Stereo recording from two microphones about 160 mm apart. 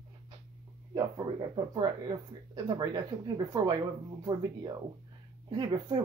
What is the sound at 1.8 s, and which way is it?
Speech, 25° right (ahead or behind).